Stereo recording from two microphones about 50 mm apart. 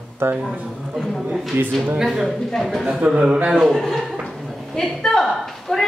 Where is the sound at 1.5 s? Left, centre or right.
Right.